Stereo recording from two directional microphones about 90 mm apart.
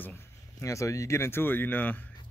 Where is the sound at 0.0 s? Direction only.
30° left (ahead or behind).